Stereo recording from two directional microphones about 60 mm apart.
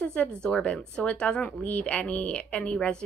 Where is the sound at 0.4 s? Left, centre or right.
Centre.